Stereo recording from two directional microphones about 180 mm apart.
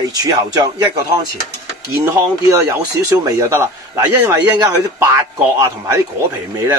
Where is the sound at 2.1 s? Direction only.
15° right (ahead or behind).